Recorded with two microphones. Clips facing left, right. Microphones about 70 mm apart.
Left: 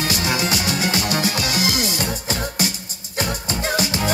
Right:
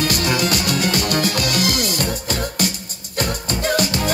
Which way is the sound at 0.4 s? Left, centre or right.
Right.